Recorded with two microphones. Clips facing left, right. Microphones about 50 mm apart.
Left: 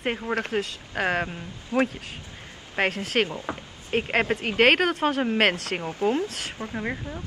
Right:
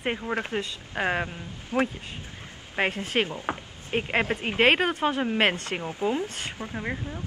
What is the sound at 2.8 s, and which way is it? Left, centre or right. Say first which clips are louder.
Speech: left 2 dB; centre.